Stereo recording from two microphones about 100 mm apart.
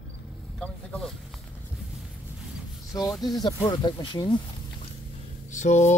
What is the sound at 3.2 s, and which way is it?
Speech, 45° left (ahead or behind).